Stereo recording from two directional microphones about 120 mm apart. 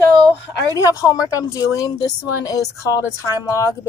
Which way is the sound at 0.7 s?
30° left (ahead or behind).